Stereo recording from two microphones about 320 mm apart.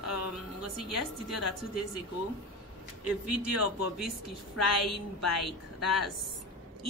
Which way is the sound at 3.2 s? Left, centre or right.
Left.